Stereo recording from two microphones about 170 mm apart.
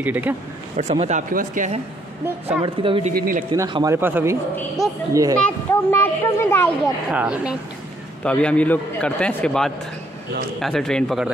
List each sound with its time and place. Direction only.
0.0 s a man's voice: 10° right (ahead or behind)
0.7 s speech: 40° right (ahead or behind)
1.3 s a man's voice: 50° right (ahead or behind)
2.6 s speech: 30° right (ahead or behind)
3.2 s speech: 55° right (ahead or behind)
3.5 s a man's voice: 20° right (ahead or behind)
5.4 s a man's voice: 15° left (ahead or behind)
7.1 s a man's voice: 5° right (ahead or behind)
8.2 s a man's voice: 5° left (ahead or behind)